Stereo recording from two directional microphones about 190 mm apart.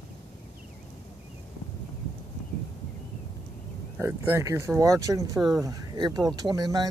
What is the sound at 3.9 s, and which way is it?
Speech, 10° right (ahead or behind).